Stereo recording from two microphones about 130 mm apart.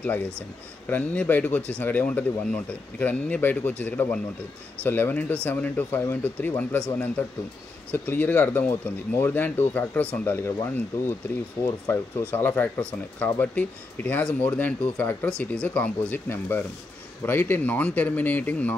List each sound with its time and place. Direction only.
0.0 s speech: 10° left (ahead or behind)